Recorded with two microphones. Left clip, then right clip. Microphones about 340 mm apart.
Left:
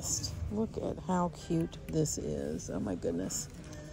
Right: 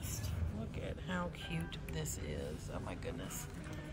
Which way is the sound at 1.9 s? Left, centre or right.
Left.